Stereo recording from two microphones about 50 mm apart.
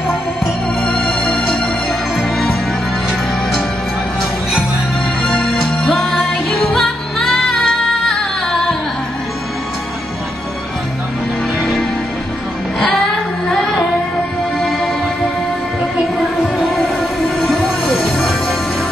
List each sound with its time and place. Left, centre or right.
1.0 s music: centre
4.2 s music: centre
5.4 s music: centre
7.5 s music: centre
17.4 s music: centre